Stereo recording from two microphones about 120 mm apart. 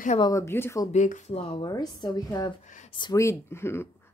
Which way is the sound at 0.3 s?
20° left (ahead or behind).